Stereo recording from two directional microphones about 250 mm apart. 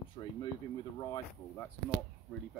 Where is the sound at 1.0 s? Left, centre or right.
Centre.